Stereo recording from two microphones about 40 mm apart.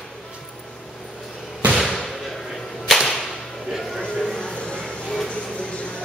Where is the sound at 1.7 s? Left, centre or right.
Centre.